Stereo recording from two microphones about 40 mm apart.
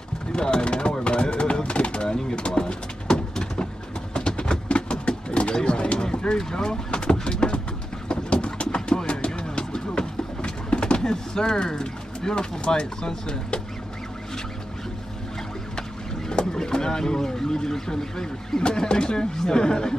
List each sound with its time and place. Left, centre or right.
0.3 s speech: left
1.0 s pigeon: left
4.1 s a sound: left
8.1 s vehicle: left
11.0 s a sound: centre
12.6 s speech: left
16.3 s speech: centre